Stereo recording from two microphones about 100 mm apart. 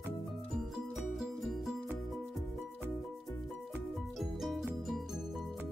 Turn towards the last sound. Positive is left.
turn(degrees=0)  # may be behind; listen again after turning